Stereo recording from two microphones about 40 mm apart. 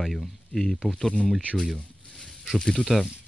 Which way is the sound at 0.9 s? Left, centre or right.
Centre.